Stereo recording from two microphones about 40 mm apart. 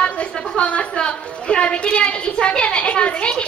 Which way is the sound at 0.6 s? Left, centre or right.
Left.